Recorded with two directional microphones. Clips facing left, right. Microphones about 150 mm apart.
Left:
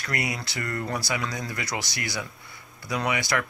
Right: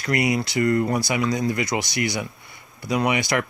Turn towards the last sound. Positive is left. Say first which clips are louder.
# right 5 dB
turn(degrees=-20)  # may be behind; listen again after turning